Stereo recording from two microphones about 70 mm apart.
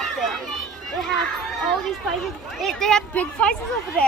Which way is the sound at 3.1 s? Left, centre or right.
Centre.